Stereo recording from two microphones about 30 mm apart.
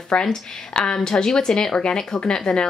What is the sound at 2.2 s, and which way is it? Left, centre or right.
Speech, left.